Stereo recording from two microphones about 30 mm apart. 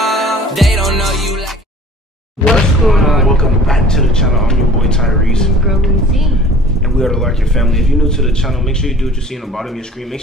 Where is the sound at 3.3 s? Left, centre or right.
Left.